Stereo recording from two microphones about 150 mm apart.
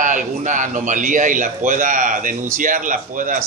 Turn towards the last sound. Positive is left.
turn(degrees=-60)  # may be behind; listen again after turning